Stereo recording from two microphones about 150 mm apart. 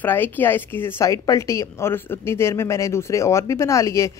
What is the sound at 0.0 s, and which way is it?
A woman's voice, 15° left (ahead or behind).